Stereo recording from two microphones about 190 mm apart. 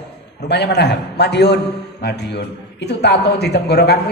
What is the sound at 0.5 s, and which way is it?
A man's voice, 60° left (ahead or behind).